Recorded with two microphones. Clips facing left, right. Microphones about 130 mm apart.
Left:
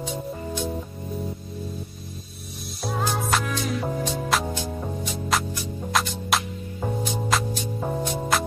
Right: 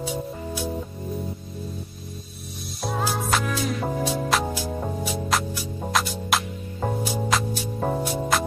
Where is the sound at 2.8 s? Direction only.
Centre (ahead or behind).